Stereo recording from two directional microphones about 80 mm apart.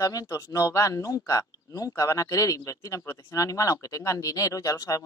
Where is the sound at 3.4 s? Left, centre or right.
Left.